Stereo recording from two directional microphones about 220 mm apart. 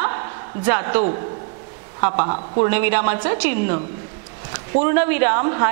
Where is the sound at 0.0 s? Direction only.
15° right (ahead or behind).